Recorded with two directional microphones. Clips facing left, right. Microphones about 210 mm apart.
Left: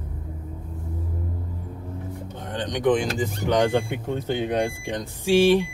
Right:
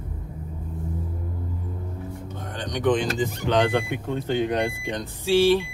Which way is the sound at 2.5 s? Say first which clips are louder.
Left 2 dB; 20° left (ahead or behind).